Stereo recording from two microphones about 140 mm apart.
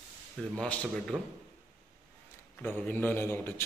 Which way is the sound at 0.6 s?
5° left (ahead or behind).